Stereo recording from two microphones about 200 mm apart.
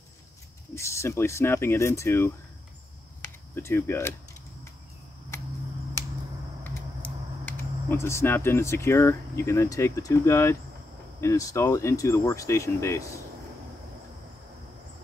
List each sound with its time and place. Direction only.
0.7 s speech: 15° left (ahead or behind)
3.5 s speech: 10° left (ahead or behind)
6.6 s speech: 10° left (ahead or behind)